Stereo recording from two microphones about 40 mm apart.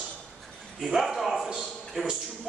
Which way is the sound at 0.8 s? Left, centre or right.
Centre.